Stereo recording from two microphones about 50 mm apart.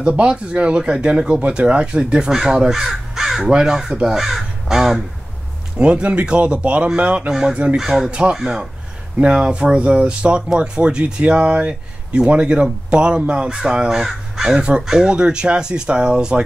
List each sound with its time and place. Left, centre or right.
0.0 s speech: right
5.8 s speech: right
7.2 s speech: centre
14.5 s speech: centre